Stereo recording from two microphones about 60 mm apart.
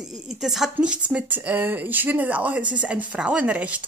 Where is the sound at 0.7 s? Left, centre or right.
Right.